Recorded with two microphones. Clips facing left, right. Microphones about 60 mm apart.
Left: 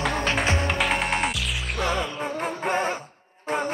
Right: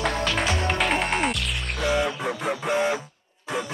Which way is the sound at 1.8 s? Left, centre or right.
Left.